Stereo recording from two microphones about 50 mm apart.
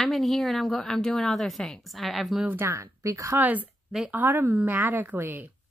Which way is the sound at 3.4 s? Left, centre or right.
Right.